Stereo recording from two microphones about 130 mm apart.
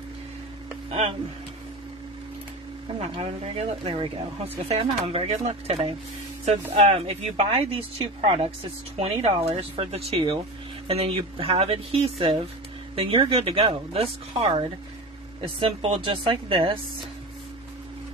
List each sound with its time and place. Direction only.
0.8 s speech: 55° right (ahead or behind)
3.0 s speech: 50° right (ahead or behind)
15.6 s speech: 45° right (ahead or behind)